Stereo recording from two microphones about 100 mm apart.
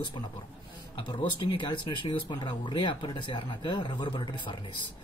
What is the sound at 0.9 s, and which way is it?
Speech, 55° left (ahead or behind).